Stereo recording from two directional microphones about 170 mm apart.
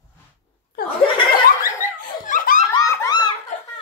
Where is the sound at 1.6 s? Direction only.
50° left (ahead or behind).